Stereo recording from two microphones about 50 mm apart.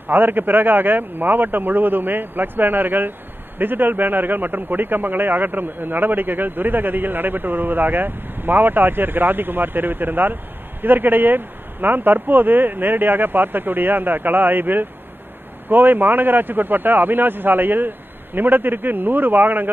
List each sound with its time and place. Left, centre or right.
0.1 s a man's voice: right